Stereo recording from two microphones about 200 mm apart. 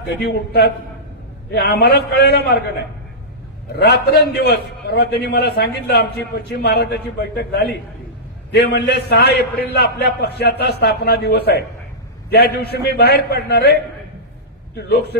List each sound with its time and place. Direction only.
0.0 s a man's voice: 55° left (ahead or behind)
3.7 s a man's voice: 55° left (ahead or behind)
14.8 s a man's voice: 50° left (ahead or behind)